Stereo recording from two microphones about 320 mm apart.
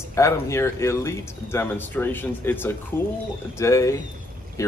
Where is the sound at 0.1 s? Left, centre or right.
Centre.